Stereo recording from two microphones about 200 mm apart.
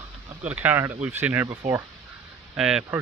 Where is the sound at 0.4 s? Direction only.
10° right (ahead or behind).